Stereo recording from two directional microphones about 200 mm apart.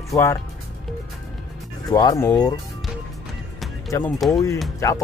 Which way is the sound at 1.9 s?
20° left (ahead or behind).